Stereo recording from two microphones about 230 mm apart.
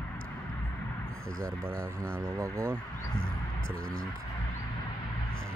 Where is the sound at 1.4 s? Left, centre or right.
Right.